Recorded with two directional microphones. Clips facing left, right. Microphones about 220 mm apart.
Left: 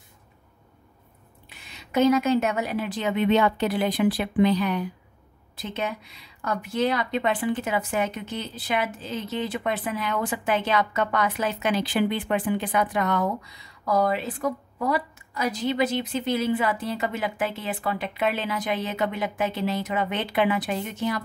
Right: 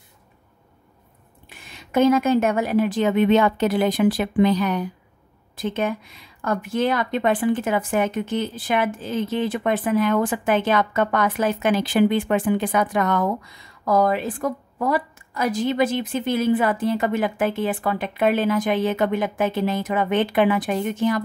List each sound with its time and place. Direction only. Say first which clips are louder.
1.5 s speech: right 4 dB; 50° right (ahead or behind)